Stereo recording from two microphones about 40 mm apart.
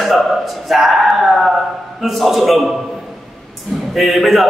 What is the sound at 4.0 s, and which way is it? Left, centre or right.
Speech, centre.